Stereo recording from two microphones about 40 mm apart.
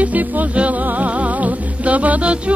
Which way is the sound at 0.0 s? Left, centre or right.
Right.